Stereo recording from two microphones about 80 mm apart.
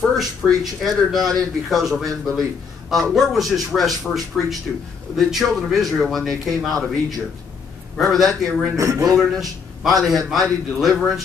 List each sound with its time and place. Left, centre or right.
0.4 s speech: centre
8.0 s speech: centre
8.7 s speech: right
9.3 s speech: centre